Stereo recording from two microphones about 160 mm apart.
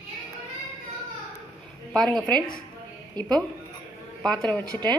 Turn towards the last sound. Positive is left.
turn(degrees=10)  # may be behind; listen again after turning